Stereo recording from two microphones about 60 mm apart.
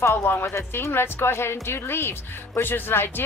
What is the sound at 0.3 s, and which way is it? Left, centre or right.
A woman's voice, left.